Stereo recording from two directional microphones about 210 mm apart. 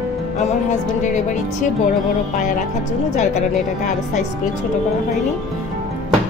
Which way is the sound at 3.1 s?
30° left (ahead or behind).